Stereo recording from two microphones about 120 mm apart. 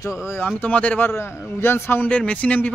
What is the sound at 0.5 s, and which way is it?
A man's voice, 10° left (ahead or behind).